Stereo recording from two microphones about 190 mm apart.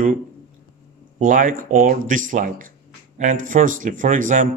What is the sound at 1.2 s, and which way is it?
Speech, 45° right (ahead or behind).